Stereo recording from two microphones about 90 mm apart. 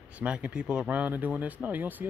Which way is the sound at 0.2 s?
15° right (ahead or behind).